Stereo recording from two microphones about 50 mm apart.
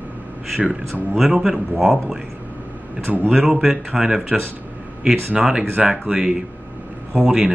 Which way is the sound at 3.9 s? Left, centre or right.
Centre.